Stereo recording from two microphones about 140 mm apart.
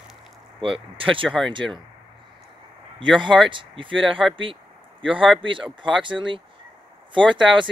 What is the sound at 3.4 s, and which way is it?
Speech, 35° right (ahead or behind).